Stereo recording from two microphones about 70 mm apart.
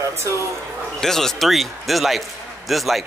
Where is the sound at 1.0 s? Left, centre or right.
Centre.